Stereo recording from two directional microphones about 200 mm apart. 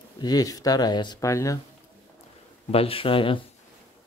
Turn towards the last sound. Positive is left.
turn(degrees=25)  # may be behind; listen again after turning